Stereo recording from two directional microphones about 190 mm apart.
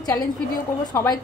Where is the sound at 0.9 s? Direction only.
20° left (ahead or behind).